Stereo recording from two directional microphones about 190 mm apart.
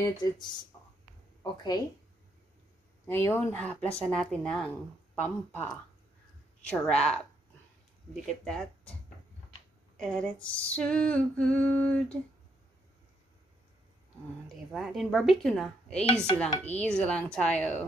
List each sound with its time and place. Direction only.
0.0 s speech: 20° left (ahead or behind)
0.7 s a sound: 20° left (ahead or behind)
1.4 s speech: 20° left (ahead or behind)
3.1 s speech: 10° left (ahead or behind)
8.5 s speech: 5° left (ahead or behind)
9.9 s speech: 5° left (ahead or behind)
14.7 s speech: centre (ahead or behind)